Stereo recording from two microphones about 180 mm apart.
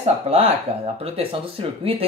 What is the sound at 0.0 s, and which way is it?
Speech, 35° right (ahead or behind).